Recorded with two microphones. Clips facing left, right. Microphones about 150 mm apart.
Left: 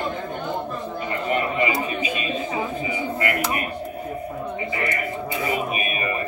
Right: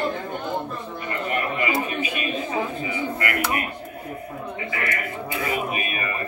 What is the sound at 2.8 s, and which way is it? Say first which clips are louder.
Speech: left 2 dB; 20° left (ahead or behind).